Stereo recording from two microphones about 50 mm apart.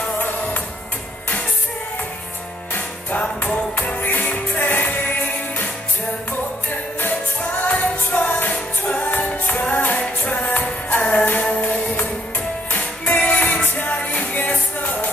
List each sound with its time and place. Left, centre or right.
3.2 s music: left
3.7 s music: left
7.5 s music: left
12.7 s music: left